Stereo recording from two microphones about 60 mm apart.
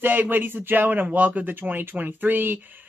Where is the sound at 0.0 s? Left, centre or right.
Right.